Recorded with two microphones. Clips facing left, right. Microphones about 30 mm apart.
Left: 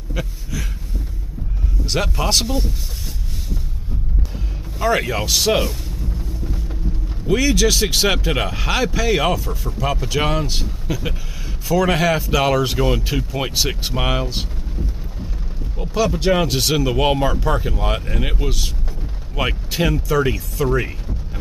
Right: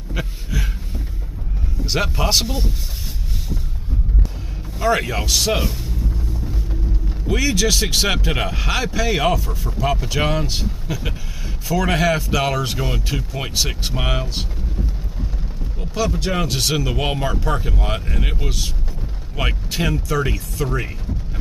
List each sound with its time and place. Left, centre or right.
0.1 s a sound: centre
2.1 s speech: centre
4.7 s speech: centre
7.2 s speech: centre
15.8 s speech: centre